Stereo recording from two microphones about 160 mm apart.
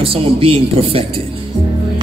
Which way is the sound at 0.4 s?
35° right (ahead or behind).